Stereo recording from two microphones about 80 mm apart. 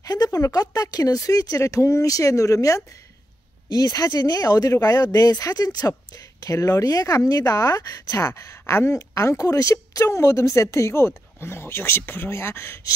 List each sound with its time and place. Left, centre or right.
0.0 s speech: left